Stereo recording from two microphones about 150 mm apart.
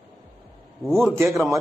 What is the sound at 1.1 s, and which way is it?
Speech, 20° right (ahead or behind).